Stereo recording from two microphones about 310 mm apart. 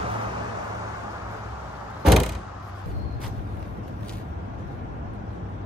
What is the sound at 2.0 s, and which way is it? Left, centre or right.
Door, centre.